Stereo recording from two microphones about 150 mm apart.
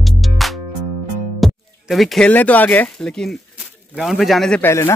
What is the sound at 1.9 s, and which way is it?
Speech, centre (ahead or behind).